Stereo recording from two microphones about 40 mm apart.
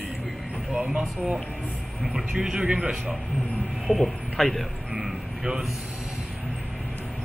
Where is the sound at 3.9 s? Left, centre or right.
Centre.